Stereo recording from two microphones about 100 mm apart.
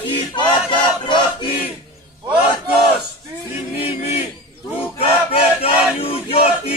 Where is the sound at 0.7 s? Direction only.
55° left (ahead or behind).